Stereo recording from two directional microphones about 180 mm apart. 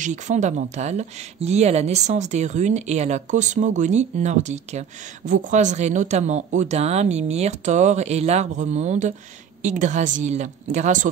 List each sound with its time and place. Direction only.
0.0 s speech: 40° right (ahead or behind)